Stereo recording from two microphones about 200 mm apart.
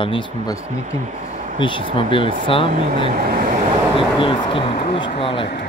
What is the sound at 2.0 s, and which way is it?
Speech, 25° left (ahead or behind).